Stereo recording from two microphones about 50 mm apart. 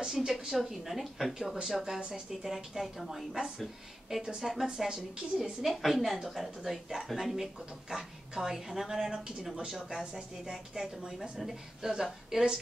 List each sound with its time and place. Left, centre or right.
0.0 s a woman's voice: centre
2.0 s a woman's voice: right
2.4 s a woman's voice: centre
4.4 s a woman's voice: centre